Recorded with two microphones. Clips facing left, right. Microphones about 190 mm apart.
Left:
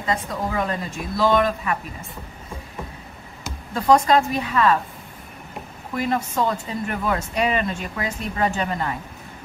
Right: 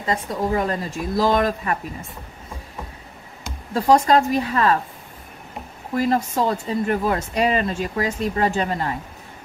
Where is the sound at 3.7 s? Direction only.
35° right (ahead or behind).